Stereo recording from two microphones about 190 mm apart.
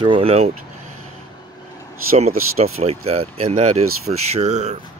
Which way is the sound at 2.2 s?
35° right (ahead or behind).